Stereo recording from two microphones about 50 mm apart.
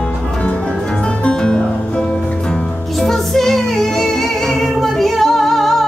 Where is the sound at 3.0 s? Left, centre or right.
Centre.